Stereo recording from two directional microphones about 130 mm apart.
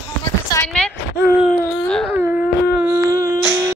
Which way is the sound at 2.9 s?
25° right (ahead or behind).